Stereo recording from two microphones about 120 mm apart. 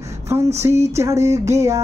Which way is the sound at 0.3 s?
25° right (ahead or behind).